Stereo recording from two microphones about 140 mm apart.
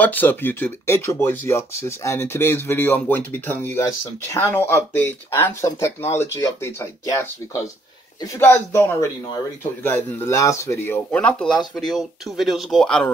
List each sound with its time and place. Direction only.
0.0 s speech: 15° left (ahead or behind)